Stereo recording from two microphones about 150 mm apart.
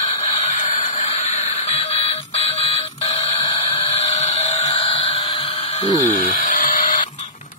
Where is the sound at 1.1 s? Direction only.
45° left (ahead or behind).